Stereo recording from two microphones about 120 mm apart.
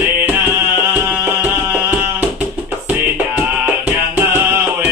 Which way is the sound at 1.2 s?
15° right (ahead or behind).